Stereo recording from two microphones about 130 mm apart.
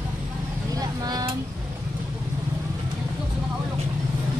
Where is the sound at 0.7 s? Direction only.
30° right (ahead or behind).